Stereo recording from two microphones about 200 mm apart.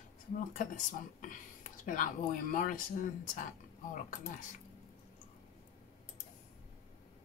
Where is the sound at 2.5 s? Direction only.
40° left (ahead or behind).